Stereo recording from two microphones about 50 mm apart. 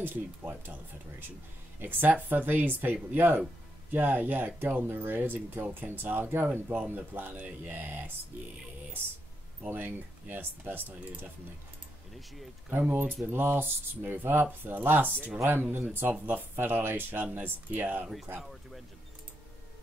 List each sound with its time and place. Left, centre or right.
0.0 s speech: right
1.8 s speech: right
4.8 s speech: right
9.8 s speech: right
12.7 s speech: right
18.4 s a sound: centre